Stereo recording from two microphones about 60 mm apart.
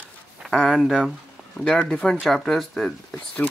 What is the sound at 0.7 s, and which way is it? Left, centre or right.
Speech, centre.